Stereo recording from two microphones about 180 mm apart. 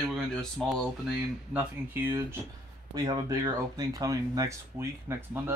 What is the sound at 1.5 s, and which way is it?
Speech, 10° right (ahead or behind).